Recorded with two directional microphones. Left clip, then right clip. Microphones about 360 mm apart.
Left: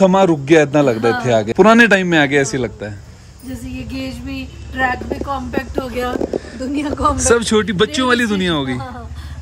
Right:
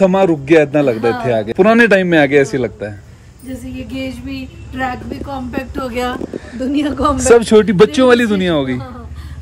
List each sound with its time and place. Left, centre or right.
0.0 s a man's voice: centre
3.9 s a man's voice: centre; by 7.2 s right
7.2 s a man's voice: centre